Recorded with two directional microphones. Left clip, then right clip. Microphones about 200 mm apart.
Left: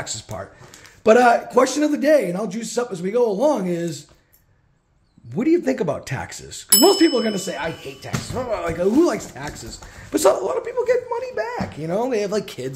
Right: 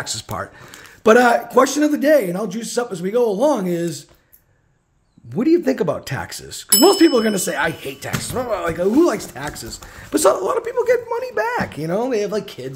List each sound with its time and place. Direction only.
0.0 s a man's voice: 20° right (ahead or behind)
5.3 s a man's voice: 15° right (ahead or behind); by 8.1 s 35° right (ahead or behind)
8.3 s speech: 20° right (ahead or behind)
12.2 s speech: 5° left (ahead or behind)